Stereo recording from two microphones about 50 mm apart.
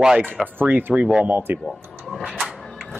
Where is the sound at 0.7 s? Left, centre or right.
Right.